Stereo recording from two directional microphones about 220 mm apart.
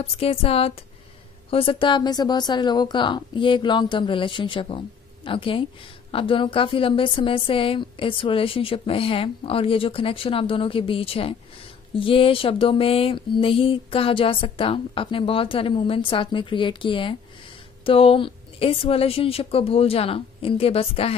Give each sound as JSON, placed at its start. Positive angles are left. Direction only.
{"t": 0.0, "sound": "a woman's voice", "side_deg": 25}